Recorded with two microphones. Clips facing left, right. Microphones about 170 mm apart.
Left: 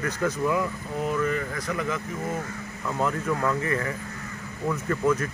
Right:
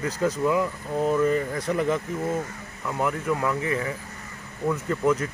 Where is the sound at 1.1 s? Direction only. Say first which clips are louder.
Right 4 dB; 30° right (ahead or behind).